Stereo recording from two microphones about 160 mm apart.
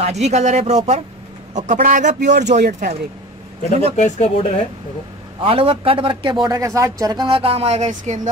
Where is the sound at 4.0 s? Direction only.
45° left (ahead or behind).